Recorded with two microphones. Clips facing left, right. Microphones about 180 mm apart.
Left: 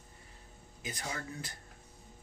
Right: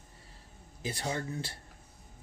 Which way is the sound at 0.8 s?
30° right (ahead or behind).